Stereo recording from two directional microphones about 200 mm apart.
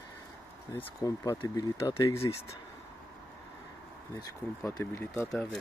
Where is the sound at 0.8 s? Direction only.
15° left (ahead or behind).